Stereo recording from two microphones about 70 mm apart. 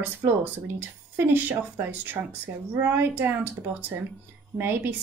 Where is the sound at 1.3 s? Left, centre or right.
Right.